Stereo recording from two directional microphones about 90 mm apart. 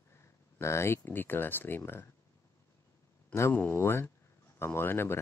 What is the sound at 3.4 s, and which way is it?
Speech, 25° left (ahead or behind).